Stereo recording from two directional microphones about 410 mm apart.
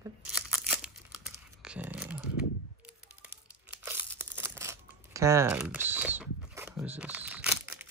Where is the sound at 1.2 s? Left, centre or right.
Centre.